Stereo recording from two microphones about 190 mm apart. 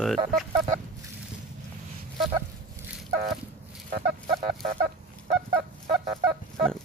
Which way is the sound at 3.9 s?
60° right (ahead or behind).